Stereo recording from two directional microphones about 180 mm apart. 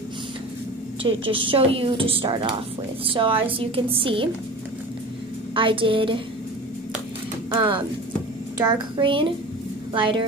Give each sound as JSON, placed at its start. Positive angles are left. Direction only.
{"t": 1.0, "sound": "a woman's voice", "side_deg": -30}
{"t": 5.5, "sound": "a woman's voice", "side_deg": -30}
{"t": 7.5, "sound": "a woman's voice", "side_deg": -30}